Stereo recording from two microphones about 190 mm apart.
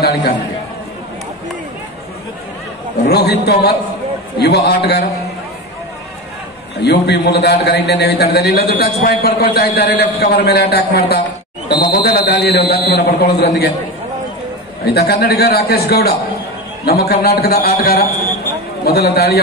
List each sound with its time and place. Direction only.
0.0 s a man's voice: 55° left (ahead or behind)
3.1 s a man's voice: 60° left (ahead or behind)
6.8 s a man's voice: 60° left (ahead or behind)
15.0 s a man's voice: 55° left (ahead or behind)